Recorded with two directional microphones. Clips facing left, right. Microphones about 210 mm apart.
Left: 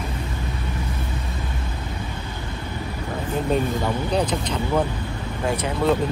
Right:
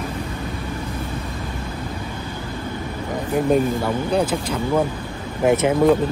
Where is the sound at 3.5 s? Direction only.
5° right (ahead or behind).